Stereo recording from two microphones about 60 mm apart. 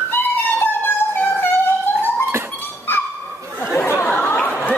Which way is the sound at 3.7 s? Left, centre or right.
Left.